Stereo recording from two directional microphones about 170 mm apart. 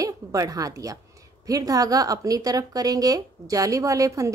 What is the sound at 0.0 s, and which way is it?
A woman's voice, 20° right (ahead or behind).